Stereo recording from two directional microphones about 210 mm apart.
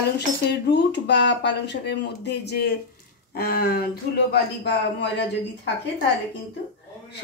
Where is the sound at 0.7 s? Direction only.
55° left (ahead or behind).